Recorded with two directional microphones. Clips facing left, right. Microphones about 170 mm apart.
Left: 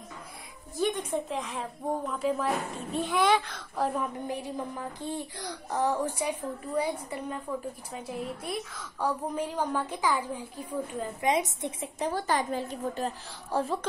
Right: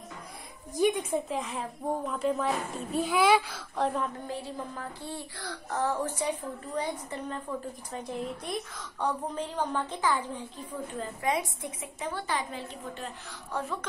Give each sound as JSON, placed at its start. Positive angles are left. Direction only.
{"t": 0.7, "sound": "speech", "side_deg": -10}
{"t": 4.0, "sound": "a woman's voice", "side_deg": 15}
{"t": 11.1, "sound": "a woman's voice", "side_deg": 20}